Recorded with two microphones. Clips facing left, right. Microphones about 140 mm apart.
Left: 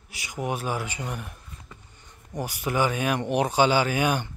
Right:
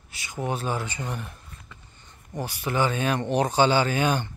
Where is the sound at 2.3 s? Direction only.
15° left (ahead or behind).